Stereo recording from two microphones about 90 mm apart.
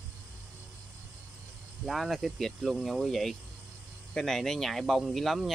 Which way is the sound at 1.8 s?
Centre (ahead or behind).